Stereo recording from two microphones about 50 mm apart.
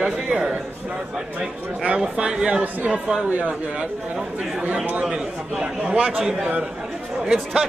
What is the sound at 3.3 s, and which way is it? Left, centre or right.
Speech, right.